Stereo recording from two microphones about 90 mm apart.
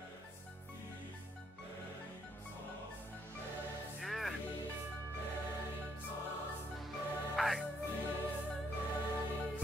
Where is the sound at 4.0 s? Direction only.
Centre (ahead or behind).